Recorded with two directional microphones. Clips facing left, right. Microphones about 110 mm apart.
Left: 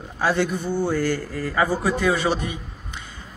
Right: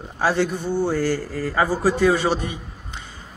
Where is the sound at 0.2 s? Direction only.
35° right (ahead or behind).